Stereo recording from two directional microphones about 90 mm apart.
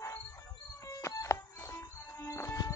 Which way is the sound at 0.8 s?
35° left (ahead or behind).